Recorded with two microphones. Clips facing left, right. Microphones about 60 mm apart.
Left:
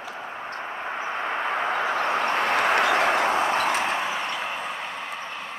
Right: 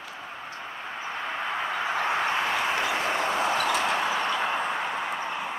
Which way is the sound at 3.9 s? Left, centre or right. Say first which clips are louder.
Right 1 dB; centre.